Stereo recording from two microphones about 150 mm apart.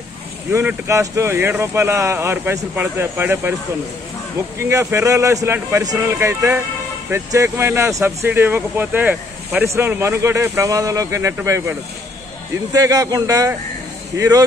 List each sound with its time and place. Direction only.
0.5 s speech: 15° right (ahead or behind)
4.6 s speech: 20° right (ahead or behind)
12.7 s speech: 25° right (ahead or behind)